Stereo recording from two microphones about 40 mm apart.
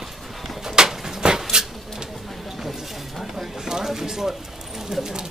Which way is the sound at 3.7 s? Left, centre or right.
Centre.